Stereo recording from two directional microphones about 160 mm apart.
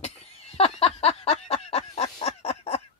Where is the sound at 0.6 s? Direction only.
40° left (ahead or behind).